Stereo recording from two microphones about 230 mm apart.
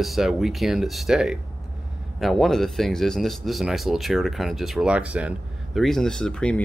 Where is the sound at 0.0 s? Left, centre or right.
Centre.